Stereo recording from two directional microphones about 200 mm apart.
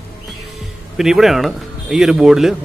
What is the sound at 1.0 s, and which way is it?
A man's voice, centre (ahead or behind).